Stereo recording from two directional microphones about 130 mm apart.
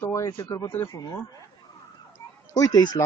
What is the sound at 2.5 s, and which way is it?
Speech, 25° left (ahead or behind).